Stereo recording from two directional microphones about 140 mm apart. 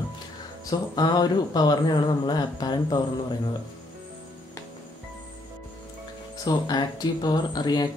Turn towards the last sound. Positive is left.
turn(degrees=30)  # may be behind; listen again after turning